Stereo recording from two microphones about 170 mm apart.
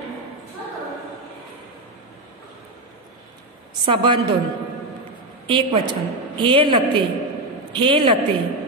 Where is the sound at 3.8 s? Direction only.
30° right (ahead or behind).